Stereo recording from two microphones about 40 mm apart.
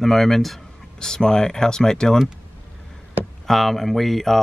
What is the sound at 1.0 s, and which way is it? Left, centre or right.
Speech, centre.